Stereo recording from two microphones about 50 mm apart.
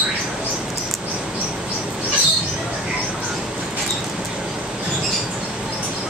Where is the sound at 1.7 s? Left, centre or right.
Right.